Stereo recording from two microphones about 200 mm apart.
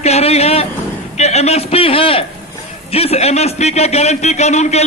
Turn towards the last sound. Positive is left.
turn(degrees=35)  # may be behind; listen again after turning